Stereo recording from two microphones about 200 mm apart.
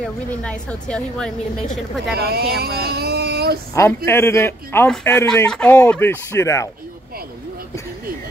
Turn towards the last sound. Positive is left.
turn(degrees=15)  # may be behind; listen again after turning